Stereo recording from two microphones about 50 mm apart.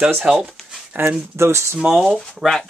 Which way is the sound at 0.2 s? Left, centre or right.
Centre.